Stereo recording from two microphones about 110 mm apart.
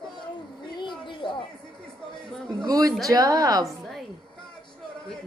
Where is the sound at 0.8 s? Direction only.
45° left (ahead or behind).